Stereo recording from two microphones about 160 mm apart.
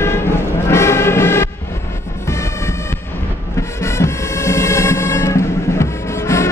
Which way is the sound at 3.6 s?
15° left (ahead or behind).